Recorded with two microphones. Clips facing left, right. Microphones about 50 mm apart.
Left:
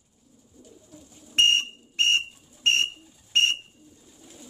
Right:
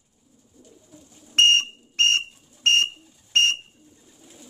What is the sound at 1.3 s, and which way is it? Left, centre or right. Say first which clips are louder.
Whistle: right 3 dB; right.